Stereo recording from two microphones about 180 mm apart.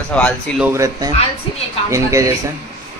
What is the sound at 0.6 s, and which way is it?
Speech, 15° right (ahead or behind).